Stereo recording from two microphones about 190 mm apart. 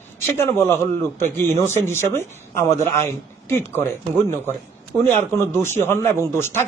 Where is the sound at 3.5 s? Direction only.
10° left (ahead or behind).